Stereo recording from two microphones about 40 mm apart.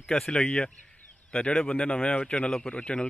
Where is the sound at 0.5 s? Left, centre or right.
Left.